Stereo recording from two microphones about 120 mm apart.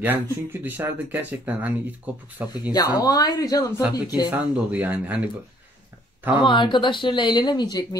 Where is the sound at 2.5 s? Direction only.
35° left (ahead or behind).